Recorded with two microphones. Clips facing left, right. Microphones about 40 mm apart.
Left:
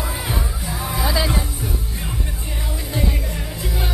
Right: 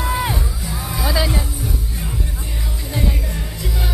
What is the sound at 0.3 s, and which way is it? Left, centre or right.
Music, left.